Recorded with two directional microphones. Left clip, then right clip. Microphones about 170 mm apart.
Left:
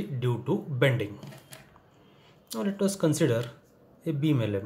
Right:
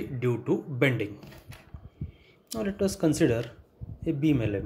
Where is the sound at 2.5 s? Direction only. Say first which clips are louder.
Even; 20° right (ahead or behind).